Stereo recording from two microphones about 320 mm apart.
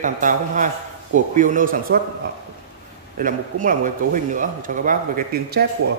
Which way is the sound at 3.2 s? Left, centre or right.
Right.